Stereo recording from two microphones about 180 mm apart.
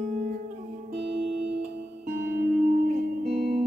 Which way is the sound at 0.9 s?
70° right (ahead or behind).